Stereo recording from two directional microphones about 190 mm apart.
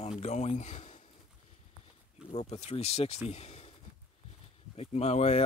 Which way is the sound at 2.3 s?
35° left (ahead or behind).